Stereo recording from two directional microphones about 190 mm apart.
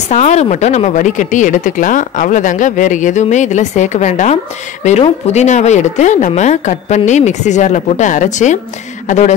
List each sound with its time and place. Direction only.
0.1 s speech: 35° left (ahead or behind)